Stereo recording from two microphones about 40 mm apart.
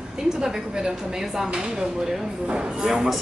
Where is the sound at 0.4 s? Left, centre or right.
Centre.